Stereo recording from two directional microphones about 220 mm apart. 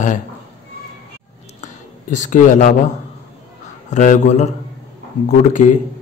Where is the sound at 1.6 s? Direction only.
35° left (ahead or behind).